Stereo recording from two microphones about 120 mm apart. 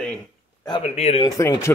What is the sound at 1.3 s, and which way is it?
Speech, 25° left (ahead or behind).